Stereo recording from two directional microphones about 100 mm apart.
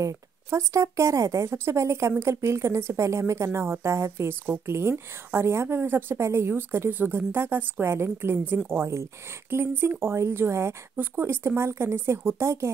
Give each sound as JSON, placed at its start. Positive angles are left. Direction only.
{"t": 0.0, "sound": "speech", "side_deg": -30}